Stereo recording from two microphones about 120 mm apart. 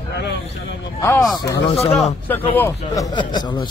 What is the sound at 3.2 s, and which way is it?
Speech, 40° left (ahead or behind).